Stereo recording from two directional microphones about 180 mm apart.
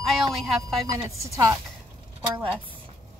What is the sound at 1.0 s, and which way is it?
Speech, 15° right (ahead or behind).